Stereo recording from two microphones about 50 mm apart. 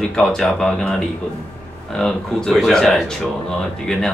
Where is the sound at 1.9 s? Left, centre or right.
Centre.